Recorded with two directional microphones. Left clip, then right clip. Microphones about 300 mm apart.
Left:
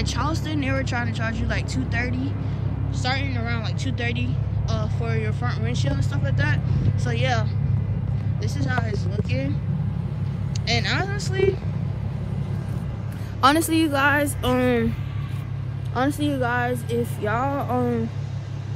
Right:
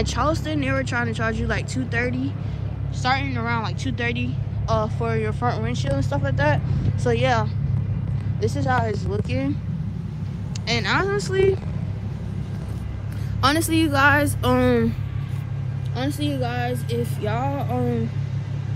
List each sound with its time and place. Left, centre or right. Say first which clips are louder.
0.1 s speech: right 4 dB; centre
10.7 s speech: right 3 dB; centre
13.4 s speech: left 2 dB; centre
16.0 s speech: left 3 dB; centre